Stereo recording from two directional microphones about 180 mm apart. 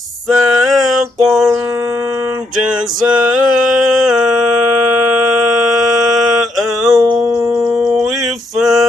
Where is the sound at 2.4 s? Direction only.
5° right (ahead or behind).